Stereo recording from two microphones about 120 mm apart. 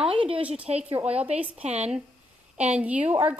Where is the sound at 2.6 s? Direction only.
10° right (ahead or behind).